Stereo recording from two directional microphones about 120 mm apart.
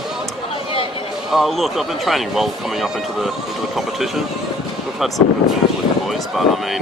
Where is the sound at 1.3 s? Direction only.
Centre (ahead or behind).